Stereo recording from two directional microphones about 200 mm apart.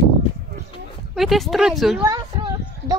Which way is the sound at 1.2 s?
Centre (ahead or behind).